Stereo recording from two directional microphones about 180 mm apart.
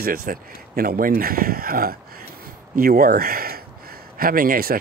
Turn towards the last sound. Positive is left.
turn(degrees=-55)  # may be behind; listen again after turning